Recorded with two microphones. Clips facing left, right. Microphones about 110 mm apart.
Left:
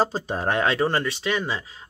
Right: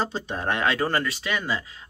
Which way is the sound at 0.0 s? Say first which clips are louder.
Left 4 dB; 40° left (ahead or behind).